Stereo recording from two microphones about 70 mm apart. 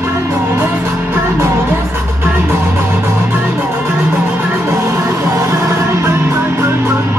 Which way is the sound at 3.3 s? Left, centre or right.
Right.